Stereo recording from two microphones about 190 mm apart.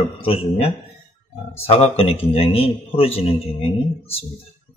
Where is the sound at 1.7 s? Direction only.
30° left (ahead or behind).